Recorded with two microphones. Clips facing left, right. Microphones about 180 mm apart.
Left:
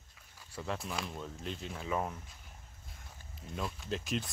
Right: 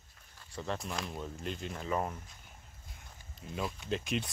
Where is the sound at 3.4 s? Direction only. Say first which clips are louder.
Right 2 dB; centre (ahead or behind).